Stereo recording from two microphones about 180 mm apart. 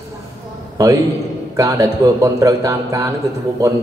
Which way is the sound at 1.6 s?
15° right (ahead or behind).